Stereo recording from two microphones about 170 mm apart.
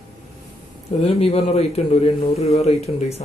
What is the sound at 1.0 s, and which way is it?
A man's voice, 35° left (ahead or behind).